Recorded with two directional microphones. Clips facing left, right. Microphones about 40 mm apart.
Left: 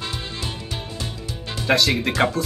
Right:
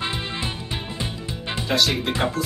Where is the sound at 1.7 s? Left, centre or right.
Left.